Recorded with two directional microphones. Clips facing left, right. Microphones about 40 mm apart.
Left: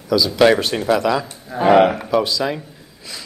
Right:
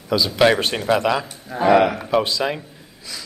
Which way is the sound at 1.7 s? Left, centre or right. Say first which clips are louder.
Left 3 dB; left.